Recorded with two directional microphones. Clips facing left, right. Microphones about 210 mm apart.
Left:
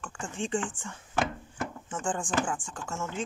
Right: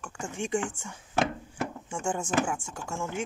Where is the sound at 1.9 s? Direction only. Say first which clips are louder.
Right 1 dB; 10° right (ahead or behind).